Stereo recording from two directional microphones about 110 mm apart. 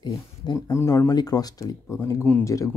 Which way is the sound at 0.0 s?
35° left (ahead or behind).